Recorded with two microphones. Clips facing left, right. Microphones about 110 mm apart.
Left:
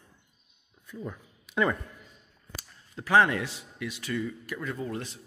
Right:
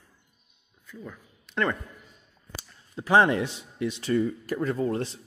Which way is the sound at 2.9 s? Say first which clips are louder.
Right 2 dB; 25° right (ahead or behind).